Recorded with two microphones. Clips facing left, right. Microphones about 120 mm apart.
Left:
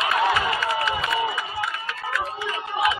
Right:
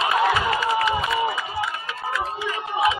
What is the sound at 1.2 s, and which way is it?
Crowd, 30° right (ahead or behind).